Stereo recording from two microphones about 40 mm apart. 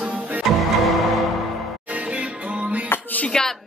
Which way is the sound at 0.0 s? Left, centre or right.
Right.